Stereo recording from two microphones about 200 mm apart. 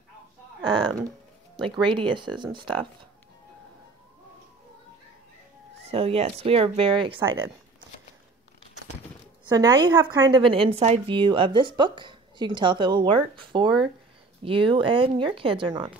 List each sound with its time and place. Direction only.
0.6 s a sound: 20° right (ahead or behind)
1.6 s a woman's voice: 25° right (ahead or behind)
5.9 s a woman's voice: 30° right (ahead or behind)
9.5 s a woman's voice: 20° right (ahead or behind)